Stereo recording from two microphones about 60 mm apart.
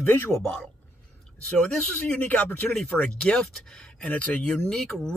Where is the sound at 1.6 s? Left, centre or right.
Centre.